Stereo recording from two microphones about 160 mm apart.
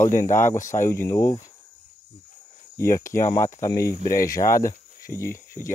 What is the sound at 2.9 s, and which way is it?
Speech, 15° left (ahead or behind).